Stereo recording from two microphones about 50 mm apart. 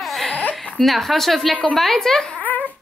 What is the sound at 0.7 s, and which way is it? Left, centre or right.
A woman's voice, centre.